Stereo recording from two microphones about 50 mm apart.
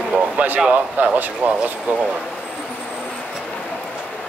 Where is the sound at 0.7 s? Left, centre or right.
Right.